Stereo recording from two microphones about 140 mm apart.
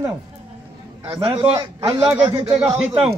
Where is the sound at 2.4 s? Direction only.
40° right (ahead or behind).